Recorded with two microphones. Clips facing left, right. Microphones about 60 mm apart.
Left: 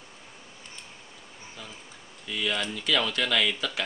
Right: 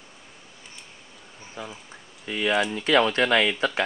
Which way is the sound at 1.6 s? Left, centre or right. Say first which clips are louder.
Right 9 dB; right.